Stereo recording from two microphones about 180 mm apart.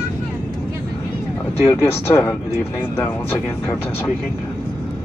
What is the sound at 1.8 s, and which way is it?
Speech, 15° left (ahead or behind).